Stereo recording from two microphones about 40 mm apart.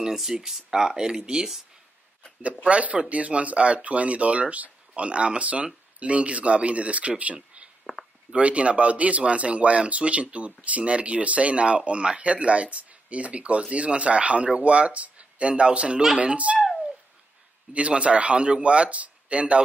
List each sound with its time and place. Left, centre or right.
0.0 s speech: centre
2.6 s speech: right
7.3 s a sound: right
8.4 s speech: right
17.7 s speech: right